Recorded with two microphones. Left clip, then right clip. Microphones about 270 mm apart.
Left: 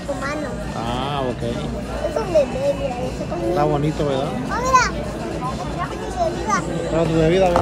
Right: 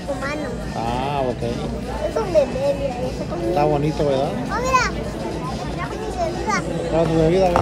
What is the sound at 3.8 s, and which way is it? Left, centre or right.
A child's voice, centre.